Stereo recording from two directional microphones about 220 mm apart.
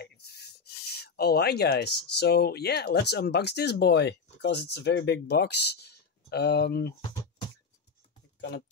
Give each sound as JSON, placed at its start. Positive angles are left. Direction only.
{"t": 0.0, "sound": "speech", "side_deg": 45}
{"t": 8.4, "sound": "speech", "side_deg": 45}